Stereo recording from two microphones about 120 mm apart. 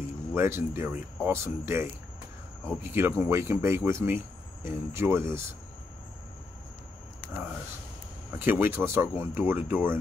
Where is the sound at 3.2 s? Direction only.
20° right (ahead or behind).